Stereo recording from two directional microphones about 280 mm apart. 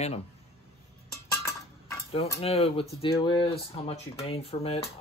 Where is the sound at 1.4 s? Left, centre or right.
Centre.